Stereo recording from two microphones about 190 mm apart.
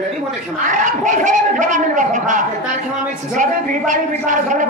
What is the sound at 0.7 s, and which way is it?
A woman's voice, 40° right (ahead or behind).